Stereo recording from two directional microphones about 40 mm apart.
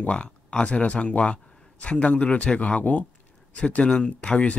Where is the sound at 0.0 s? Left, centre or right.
Left.